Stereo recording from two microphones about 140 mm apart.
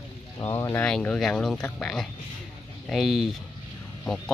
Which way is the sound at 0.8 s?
5° left (ahead or behind).